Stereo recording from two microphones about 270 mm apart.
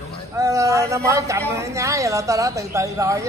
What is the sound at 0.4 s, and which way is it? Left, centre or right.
Speech, centre.